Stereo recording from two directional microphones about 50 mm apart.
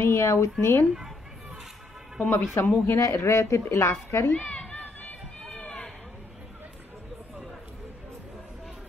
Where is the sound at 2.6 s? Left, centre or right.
Left.